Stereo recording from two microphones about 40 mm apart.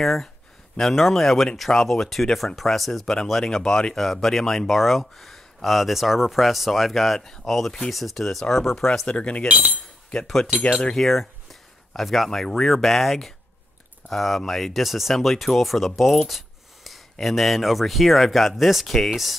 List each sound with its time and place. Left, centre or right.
0.0 s speech: centre
3.4 s speech: centre
9.0 s speech: left
9.5 s speech: right
10.2 s speech: centre